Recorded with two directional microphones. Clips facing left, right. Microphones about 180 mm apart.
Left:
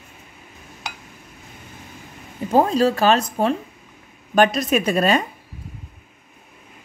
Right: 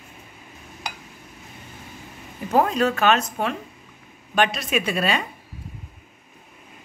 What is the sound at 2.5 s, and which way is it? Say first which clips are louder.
Speech: left 3 dB; 30° left (ahead or behind).